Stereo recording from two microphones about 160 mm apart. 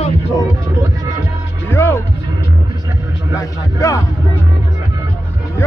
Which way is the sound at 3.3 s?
20° left (ahead or behind).